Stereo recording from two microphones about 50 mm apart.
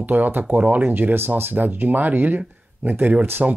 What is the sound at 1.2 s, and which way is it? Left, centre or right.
Speech, right.